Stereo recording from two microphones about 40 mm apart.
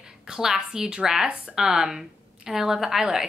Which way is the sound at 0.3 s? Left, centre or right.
Centre.